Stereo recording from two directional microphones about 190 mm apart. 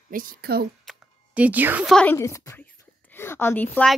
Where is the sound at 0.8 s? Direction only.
5° right (ahead or behind).